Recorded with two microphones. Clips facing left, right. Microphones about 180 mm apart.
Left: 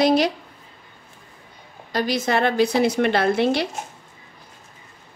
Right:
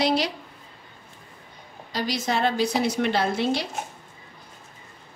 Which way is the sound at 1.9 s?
55° left (ahead or behind).